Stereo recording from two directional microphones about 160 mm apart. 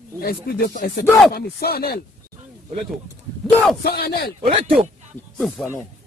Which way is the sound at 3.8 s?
75° left (ahead or behind).